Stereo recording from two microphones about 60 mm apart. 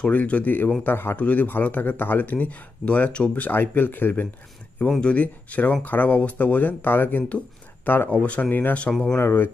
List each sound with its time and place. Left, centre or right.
0.0 s speech: left
1.1 s speech: left
3.4 s speech: left